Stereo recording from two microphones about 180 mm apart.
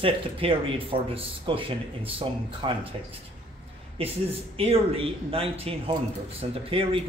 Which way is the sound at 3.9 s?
30° right (ahead or behind).